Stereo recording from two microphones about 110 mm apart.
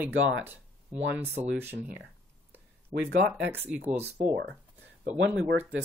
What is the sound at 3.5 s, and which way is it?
Speech, 20° right (ahead or behind).